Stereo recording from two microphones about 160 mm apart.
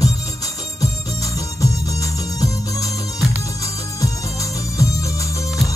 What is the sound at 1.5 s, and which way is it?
Music, 20° left (ahead or behind).